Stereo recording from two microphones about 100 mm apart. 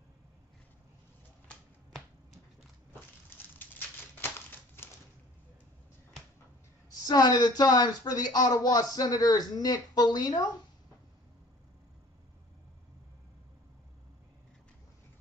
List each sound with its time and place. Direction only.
1.5 s finger snapping: 5° left (ahead or behind)
6.9 s speech: 40° left (ahead or behind)